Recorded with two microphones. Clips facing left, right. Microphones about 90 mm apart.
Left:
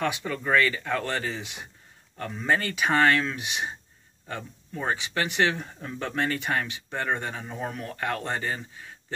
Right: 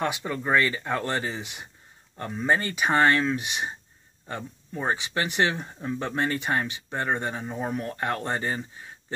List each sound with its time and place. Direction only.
0.1 s speech: 20° right (ahead or behind)
3.3 s speech: 35° right (ahead or behind)
4.7 s speech: 25° right (ahead or behind)